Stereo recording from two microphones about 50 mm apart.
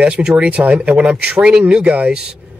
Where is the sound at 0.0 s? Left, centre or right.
Centre.